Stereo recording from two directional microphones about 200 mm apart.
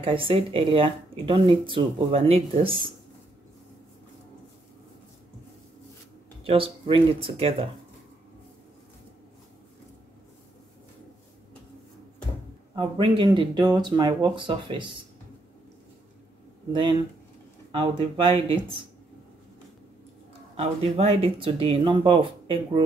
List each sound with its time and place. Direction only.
0.0 s speech: 25° right (ahead or behind)
6.4 s speech: 25° right (ahead or behind)
12.7 s speech: 25° right (ahead or behind)
17.6 s speech: 25° right (ahead or behind)
20.5 s speech: 30° right (ahead or behind)